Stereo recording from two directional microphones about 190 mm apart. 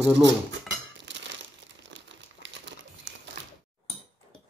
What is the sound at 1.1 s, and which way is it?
Crumpling, 70° right (ahead or behind).